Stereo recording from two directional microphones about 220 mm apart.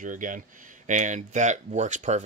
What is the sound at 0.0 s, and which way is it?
Speech, 35° right (ahead or behind).